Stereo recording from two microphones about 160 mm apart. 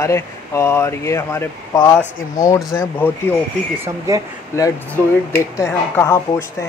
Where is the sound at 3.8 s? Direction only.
20° right (ahead or behind).